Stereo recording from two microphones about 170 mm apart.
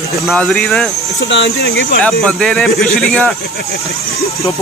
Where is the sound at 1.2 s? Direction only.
90° left.